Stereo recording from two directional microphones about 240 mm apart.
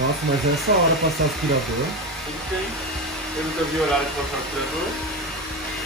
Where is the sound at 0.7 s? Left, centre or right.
Right.